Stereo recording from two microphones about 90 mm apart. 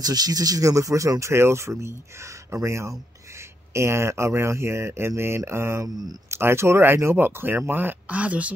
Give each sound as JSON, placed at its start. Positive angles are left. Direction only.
{"t": 0.0, "sound": "speech", "side_deg": -45}